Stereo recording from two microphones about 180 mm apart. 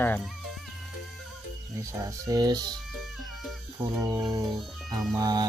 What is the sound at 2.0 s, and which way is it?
Speech, 20° right (ahead or behind).